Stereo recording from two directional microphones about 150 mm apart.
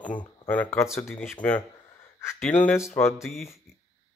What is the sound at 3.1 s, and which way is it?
Speech, centre (ahead or behind).